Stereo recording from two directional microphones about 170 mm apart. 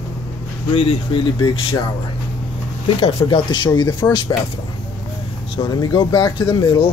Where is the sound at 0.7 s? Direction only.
30° left (ahead or behind).